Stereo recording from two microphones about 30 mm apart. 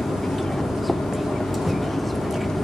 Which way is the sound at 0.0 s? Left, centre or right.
Centre.